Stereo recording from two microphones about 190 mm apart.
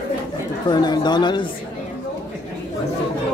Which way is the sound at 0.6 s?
20° left (ahead or behind).